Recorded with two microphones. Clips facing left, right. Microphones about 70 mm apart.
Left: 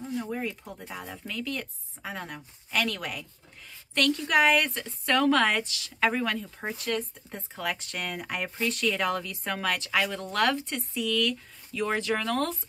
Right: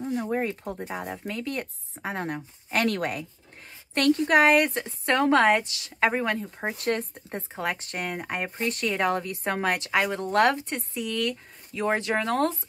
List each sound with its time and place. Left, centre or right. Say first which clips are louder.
0.1 s a woman's voice: right 4 dB; right
6.8 s speech: right 4 dB; right
7.5 s a woman's voice: right 2 dB; right